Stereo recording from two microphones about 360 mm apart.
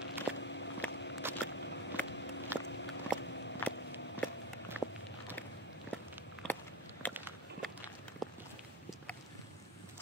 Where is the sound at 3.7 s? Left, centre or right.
Left.